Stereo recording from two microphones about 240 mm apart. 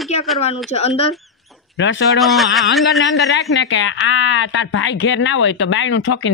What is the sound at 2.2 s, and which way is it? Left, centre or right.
Speech, centre.